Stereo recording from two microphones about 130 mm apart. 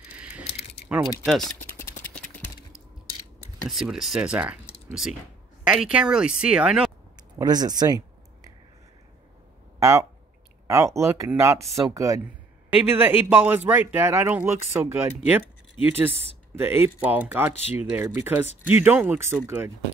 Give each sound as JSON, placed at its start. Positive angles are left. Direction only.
{"t": 0.4, "sound": "keys jangling", "side_deg": 55}
{"t": 0.8, "sound": "speech", "side_deg": -5}
{"t": 3.6, "sound": "a man's voice", "side_deg": 0}
{"t": 5.7, "sound": "a man's voice", "side_deg": -5}
{"t": 7.2, "sound": "speech", "side_deg": -30}
{"t": 9.8, "sound": "speech", "side_deg": -20}
{"t": 12.6, "sound": "a man's voice", "side_deg": -15}